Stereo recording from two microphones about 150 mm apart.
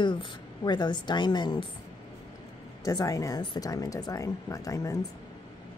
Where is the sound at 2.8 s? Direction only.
20° left (ahead or behind).